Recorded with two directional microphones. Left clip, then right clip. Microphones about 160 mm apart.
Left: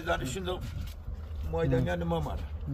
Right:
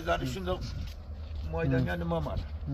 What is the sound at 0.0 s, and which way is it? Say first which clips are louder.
Speech: right 1 dB; 25° left (ahead or behind).